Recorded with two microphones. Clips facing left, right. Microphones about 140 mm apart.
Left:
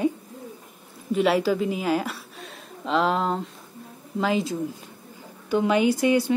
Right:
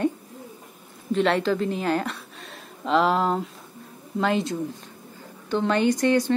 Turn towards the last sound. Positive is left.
turn(degrees=10)  # may be behind; listen again after turning